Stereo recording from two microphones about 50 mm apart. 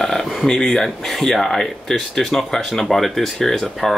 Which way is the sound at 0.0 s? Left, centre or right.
Centre.